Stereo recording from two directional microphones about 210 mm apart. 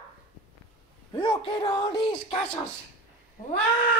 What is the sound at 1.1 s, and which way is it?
Speech, 25° left (ahead or behind).